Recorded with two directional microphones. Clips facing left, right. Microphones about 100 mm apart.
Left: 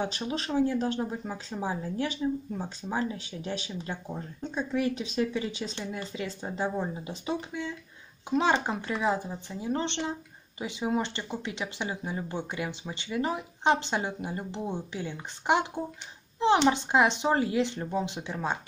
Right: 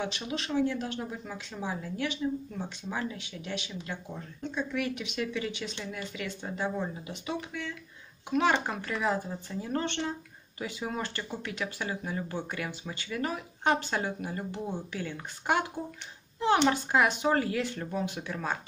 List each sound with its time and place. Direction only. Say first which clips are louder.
0.0 s a woman's voice: left 3 dB; 40° left (ahead or behind); by 18.6 s 20° left (ahead or behind)